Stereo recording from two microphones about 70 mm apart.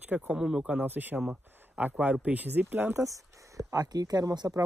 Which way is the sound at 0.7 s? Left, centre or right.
Right.